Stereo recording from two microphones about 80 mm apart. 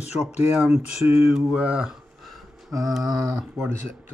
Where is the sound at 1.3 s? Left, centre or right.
Centre.